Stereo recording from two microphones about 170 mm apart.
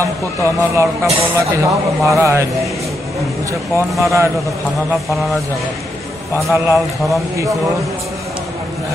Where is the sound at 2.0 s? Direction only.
15° right (ahead or behind).